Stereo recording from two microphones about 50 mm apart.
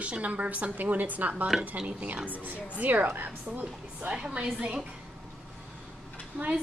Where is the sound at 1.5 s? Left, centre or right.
Centre.